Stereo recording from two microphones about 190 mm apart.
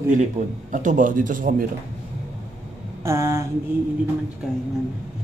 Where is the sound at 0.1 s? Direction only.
45° right (ahead or behind).